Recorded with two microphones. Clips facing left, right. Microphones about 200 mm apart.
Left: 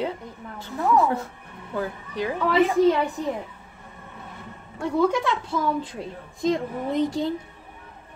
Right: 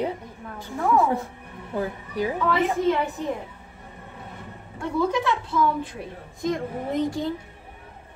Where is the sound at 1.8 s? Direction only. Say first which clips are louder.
Right 1 dB; 15° right (ahead or behind).